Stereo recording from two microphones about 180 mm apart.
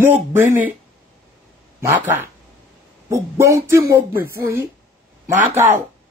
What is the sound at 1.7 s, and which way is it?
Speech, 10° right (ahead or behind).